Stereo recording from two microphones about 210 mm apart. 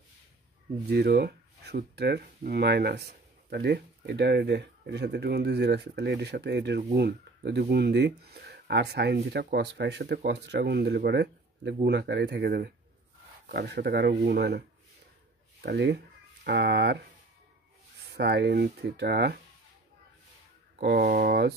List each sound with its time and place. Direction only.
0.8 s speech: 50° right (ahead or behind)
15.6 s speech: 55° right (ahead or behind)
18.1 s speech: 50° right (ahead or behind)
20.8 s speech: 45° right (ahead or behind)